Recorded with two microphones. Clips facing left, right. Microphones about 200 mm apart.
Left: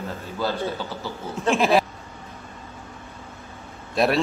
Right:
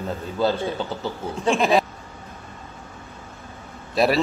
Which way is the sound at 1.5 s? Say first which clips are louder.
Even; centre (ahead or behind).